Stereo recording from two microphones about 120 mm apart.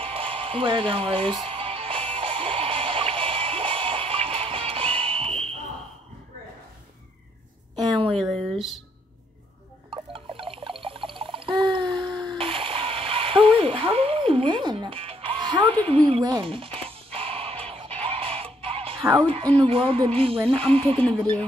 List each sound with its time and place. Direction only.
0.0 s music: 50° right (ahead or behind)
7.7 s a sound: 45° right (ahead or behind)
8.2 s speech: centre (ahead or behind)
10.1 s water: 50° right (ahead or behind)
12.4 s splash: 50° right (ahead or behind)
16.2 s speech: 35° right (ahead or behind)
16.4 s speech: 50° right (ahead or behind)
17.1 s music: 50° right (ahead or behind)
19.4 s speech: 10° left (ahead or behind)
19.7 s music: 50° right (ahead or behind)